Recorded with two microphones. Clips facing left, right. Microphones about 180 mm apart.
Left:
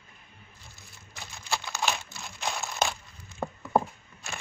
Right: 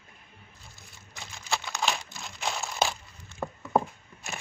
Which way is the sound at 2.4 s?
5° right (ahead or behind).